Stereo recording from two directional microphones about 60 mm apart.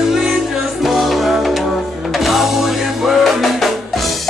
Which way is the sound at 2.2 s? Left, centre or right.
Centre.